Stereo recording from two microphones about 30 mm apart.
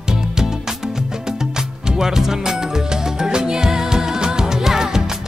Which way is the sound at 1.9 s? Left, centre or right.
Centre.